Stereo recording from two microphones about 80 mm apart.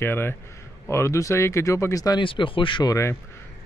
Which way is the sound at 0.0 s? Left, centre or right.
Left.